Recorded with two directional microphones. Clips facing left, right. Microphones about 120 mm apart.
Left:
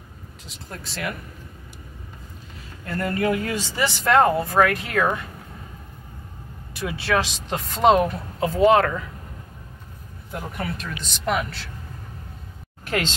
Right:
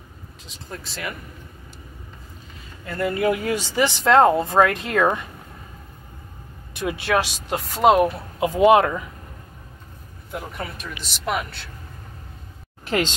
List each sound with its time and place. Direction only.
0.5 s a man's voice: centre (ahead or behind)
2.8 s a man's voice: 5° right (ahead or behind); by 5.2 s 25° right (ahead or behind)
6.7 s speech: 20° right (ahead or behind)
10.3 s a man's voice: centre (ahead or behind)
12.8 s speech: 15° right (ahead or behind)